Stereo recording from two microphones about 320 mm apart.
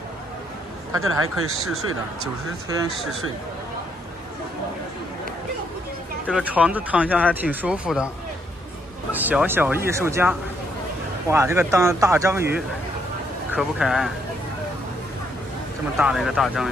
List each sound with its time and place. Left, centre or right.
1.2 s speech: right
6.2 s speech: centre
9.1 s speech: centre
13.5 s speech: centre
16.0 s speech: centre